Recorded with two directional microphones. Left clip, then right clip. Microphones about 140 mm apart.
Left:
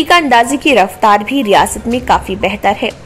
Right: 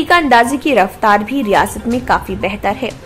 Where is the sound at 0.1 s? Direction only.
15° left (ahead or behind).